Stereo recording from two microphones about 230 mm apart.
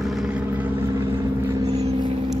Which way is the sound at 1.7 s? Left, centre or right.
Right.